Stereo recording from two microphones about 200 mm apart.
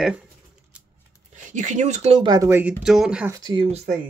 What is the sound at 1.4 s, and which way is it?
Speech, 35° right (ahead or behind).